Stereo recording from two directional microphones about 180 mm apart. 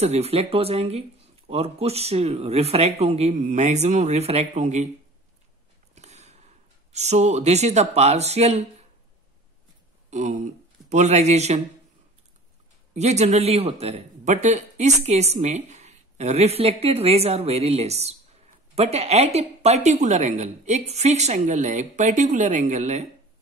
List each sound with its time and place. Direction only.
0.0 s speech: 35° right (ahead or behind)
5.9 s sniff: 40° right (ahead or behind)
6.9 s speech: 40° right (ahead or behind)
10.1 s speech: 45° right (ahead or behind)
12.9 s speech: 40° right (ahead or behind)